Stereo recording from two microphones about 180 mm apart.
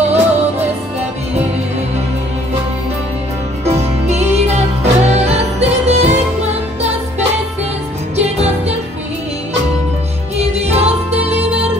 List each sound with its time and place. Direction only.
0.0 s music: 35° right (ahead or behind)
3.6 s music: 35° right (ahead or behind)
8.2 s music: 35° right (ahead or behind)
10.3 s music: 35° right (ahead or behind)